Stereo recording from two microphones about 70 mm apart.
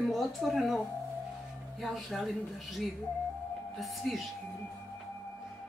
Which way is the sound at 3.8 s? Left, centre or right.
Centre.